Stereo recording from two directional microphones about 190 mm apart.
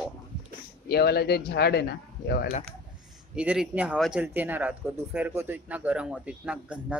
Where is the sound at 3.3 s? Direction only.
5° right (ahead or behind).